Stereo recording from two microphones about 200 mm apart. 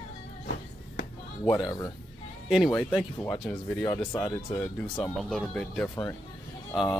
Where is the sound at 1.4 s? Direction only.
20° left (ahead or behind).